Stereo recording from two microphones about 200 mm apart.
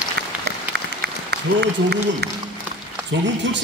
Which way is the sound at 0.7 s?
55° right (ahead or behind).